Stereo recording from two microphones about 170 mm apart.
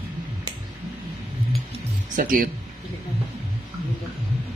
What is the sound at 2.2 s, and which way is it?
Speech, 55° right (ahead or behind).